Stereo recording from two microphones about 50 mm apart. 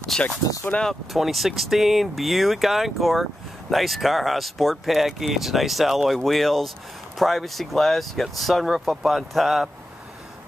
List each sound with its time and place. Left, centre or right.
0.1 s speech: centre
0.7 s speech: left
1.1 s speech: centre